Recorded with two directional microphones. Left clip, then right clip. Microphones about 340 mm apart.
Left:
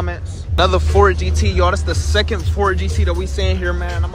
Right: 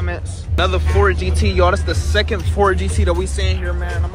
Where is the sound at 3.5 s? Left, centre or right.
Left.